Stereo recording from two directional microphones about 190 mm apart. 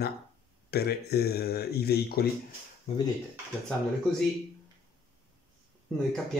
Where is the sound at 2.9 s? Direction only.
30° left (ahead or behind).